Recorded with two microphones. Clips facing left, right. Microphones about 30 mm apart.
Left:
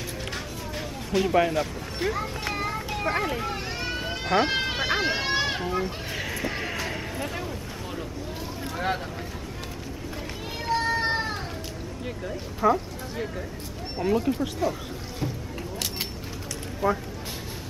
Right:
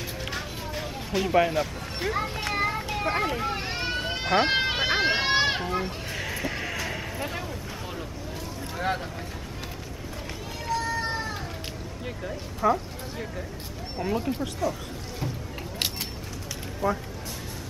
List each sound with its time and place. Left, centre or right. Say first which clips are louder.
0.3 s a sound: right 1 dB; centre
2.5 s children playing: right 5 dB; centre
2.9 s a child's voice: even; centre
3.6 s run: right 1 dB; centre
5.6 s a child's voice: left 1 dB; centre
6.1 s a sound: even; centre
8.7 s speech: even; centre
10.7 s cat: left 4 dB; left
12.0 s speech: left 1 dB; centre
16.8 s speech: left 2 dB; centre